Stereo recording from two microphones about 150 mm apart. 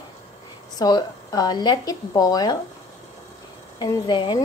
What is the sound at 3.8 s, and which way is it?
Speech, 25° left (ahead or behind).